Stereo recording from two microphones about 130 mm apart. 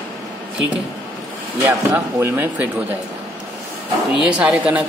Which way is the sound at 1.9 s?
15° right (ahead or behind).